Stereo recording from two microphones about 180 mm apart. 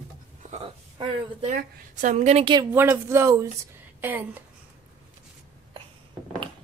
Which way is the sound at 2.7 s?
10° right (ahead or behind).